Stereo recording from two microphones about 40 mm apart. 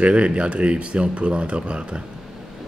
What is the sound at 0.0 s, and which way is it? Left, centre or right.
Speech, right.